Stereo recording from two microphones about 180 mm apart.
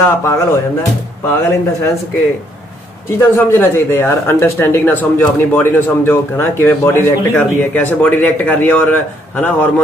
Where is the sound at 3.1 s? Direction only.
10° left (ahead or behind).